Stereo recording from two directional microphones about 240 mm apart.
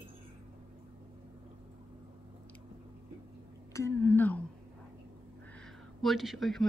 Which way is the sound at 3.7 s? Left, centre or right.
Centre.